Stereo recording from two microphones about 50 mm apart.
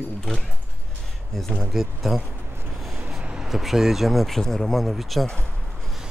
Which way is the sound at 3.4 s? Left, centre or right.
Centre.